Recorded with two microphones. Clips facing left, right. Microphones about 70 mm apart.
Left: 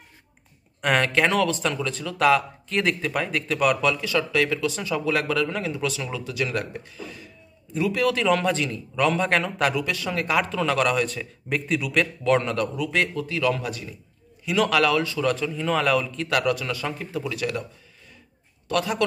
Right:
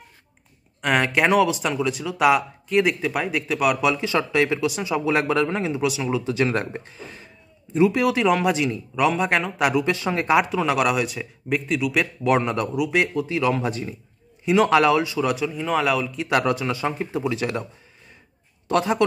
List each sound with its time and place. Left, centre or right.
0.7 s speech: centre
1.0 s speech: centre
3.8 s speech: right
6.3 s speech: right; by 9.8 s centre
9.8 s speech: right; by 16.3 s centre
16.3 s speech: right
18.7 s speech: right